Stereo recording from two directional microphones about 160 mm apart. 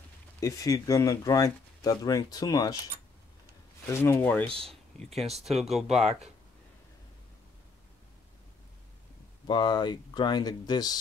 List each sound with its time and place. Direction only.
0.4 s speech: 20° left (ahead or behind)
3.9 s speech: 15° left (ahead or behind); by 6.1 s centre (ahead or behind)
9.5 s speech: 25° left (ahead or behind)